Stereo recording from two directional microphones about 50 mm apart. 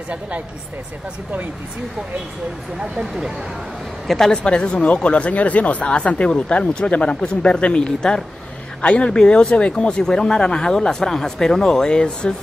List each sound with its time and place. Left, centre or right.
2.8 s speech: centre
4.3 s speech: centre